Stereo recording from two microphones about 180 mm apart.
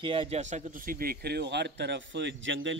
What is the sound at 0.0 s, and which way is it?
Speech, 30° right (ahead or behind).